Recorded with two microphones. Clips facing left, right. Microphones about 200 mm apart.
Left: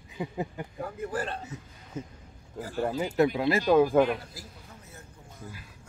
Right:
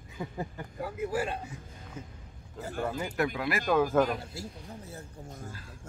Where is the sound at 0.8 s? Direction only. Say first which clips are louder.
Right 2 dB; 5° right (ahead or behind).